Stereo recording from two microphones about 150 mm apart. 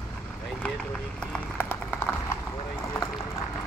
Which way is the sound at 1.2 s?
10° left (ahead or behind).